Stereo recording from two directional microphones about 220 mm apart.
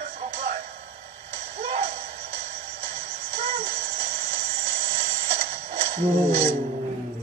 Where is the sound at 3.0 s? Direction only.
30° right (ahead or behind).